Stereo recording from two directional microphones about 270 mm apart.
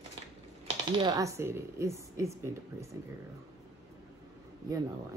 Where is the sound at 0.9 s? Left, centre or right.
Centre.